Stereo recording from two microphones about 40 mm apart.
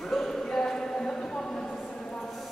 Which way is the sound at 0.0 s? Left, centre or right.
Centre.